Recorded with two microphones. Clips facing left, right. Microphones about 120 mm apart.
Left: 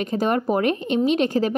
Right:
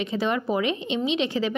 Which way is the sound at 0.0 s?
45° left (ahead or behind).